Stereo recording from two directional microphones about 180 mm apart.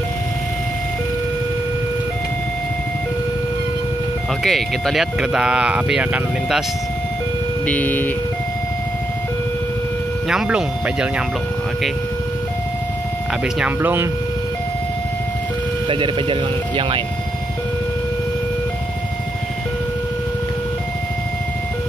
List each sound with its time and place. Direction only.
4.4 s speech: centre (ahead or behind)
7.6 s speech: 10° left (ahead or behind)
10.2 s speech: 5° right (ahead or behind)
13.6 s speech: 10° right (ahead or behind)
15.9 s speech: 30° right (ahead or behind)